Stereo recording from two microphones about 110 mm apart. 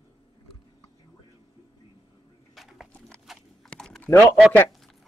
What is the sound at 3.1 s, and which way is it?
Horse, centre (ahead or behind).